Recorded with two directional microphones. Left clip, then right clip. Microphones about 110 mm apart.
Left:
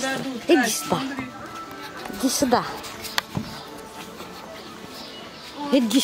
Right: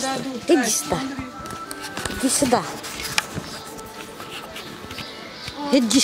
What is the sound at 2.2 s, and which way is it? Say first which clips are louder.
Speech: right 1 dB; 10° left (ahead or behind).